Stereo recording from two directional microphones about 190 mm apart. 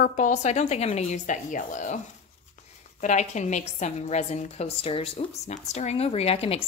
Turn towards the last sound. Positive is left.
turn(degrees=30)  # may be behind; listen again after turning